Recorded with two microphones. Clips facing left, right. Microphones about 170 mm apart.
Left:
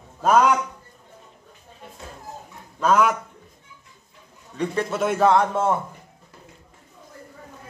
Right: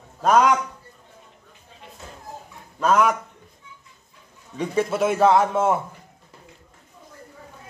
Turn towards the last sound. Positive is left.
turn(degrees=-5)  # may be behind; listen again after turning